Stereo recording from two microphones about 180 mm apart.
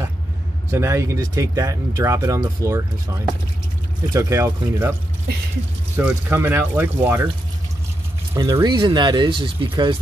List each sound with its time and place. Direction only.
0.7 s speech: 15° right (ahead or behind)
5.9 s speech: 10° right (ahead or behind)
8.4 s speech: 25° right (ahead or behind)